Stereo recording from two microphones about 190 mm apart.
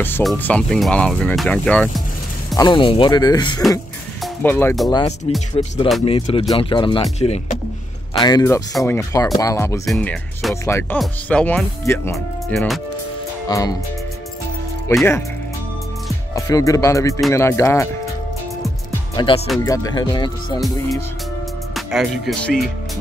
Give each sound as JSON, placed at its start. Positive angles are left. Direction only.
{"t": 0.2, "sound": "speech", "side_deg": 5}
{"t": 2.5, "sound": "speech", "side_deg": 20}
{"t": 4.2, "sound": "speech", "side_deg": 10}
{"t": 5.6, "sound": "speech", "side_deg": 30}
{"t": 8.2, "sound": "speech", "side_deg": 20}
{"t": 9.8, "sound": "speech", "side_deg": 5}
{"t": 12.5, "sound": "speech", "side_deg": 0}
{"t": 13.5, "sound": "speech", "side_deg": 20}
{"t": 14.9, "sound": "speech", "side_deg": 15}
{"t": 16.3, "sound": "speech", "side_deg": 15}
{"t": 19.1, "sound": "speech", "side_deg": 30}
{"t": 19.6, "sound": "speech", "side_deg": 15}
{"t": 21.7, "sound": "speech", "side_deg": 0}